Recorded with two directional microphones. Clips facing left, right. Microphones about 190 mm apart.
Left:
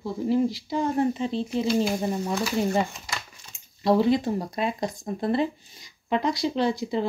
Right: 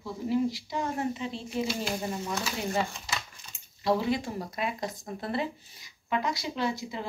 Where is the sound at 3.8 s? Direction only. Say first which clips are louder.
Left 6 dB; 25° left (ahead or behind).